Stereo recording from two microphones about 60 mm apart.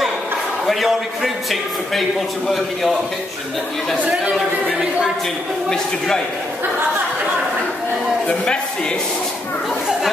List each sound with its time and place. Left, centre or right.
0.7 s a man's voice: centre
4.7 s a woman's voice: centre
5.7 s a man's voice: centre